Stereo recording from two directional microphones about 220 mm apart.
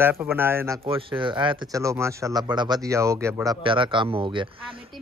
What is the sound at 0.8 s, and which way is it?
Speech, 25° right (ahead or behind).